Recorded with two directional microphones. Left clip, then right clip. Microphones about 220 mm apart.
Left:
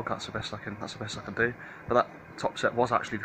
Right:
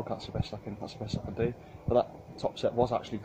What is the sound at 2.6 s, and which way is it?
Speech, 15° left (ahead or behind).